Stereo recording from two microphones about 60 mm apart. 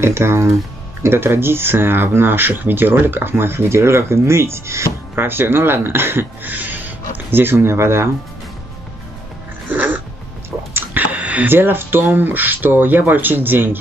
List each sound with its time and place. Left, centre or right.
0.0 s speech: right
5.1 s speech: right
10.7 s a sound: right
11.4 s speech: right